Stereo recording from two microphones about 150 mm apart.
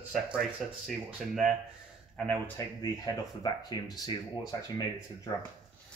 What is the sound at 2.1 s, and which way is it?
Speech, 10° left (ahead or behind).